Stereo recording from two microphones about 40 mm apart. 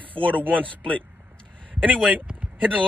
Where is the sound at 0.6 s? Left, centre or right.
Left.